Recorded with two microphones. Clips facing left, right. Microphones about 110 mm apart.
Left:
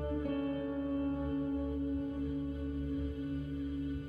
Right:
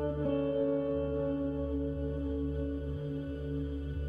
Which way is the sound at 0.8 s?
25° right (ahead or behind).